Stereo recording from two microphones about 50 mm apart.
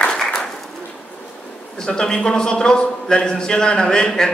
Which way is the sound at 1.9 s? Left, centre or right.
Centre.